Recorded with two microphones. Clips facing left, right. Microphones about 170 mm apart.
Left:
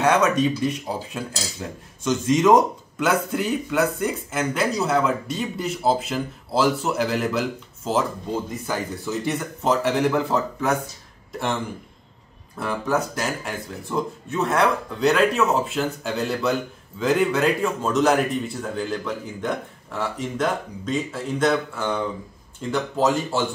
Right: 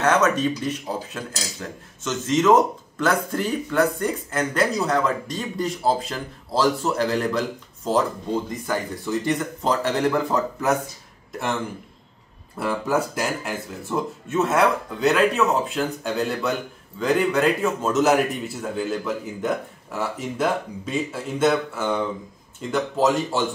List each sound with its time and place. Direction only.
0.0 s a man's voice: 10° left (ahead or behind)
12.5 s a man's voice: 10° right (ahead or behind)